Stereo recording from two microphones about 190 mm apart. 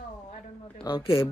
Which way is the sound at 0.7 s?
25° left (ahead or behind).